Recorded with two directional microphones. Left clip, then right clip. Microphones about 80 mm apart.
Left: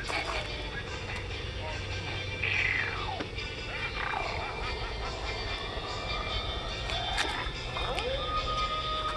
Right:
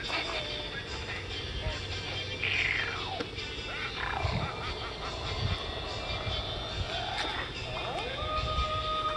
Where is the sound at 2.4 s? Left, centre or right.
Right.